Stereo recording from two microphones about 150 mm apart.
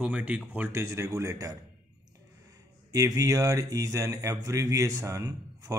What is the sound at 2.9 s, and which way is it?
Speech, 25° right (ahead or behind).